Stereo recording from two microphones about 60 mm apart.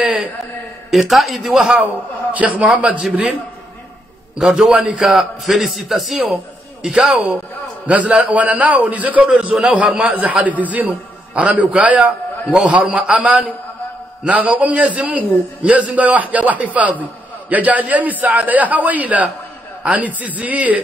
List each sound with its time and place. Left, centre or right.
0.0 s a man's voice: centre
2.3 s a man's voice: right
4.4 s a man's voice: centre
5.0 s a man's voice: centre
7.8 s a man's voice: right
14.2 s a man's voice: right